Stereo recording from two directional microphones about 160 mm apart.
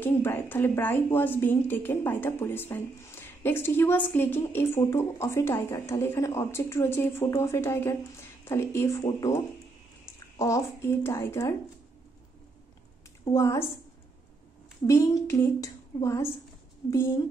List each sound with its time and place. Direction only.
0.0 s a woman's voice: 15° left (ahead or behind)
10.3 s a woman's voice: 20° left (ahead or behind)
13.3 s a woman's voice: 15° left (ahead or behind)
14.9 s a woman's voice: 20° left (ahead or behind)